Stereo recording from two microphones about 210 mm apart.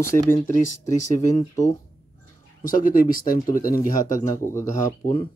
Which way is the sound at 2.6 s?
40° left (ahead or behind).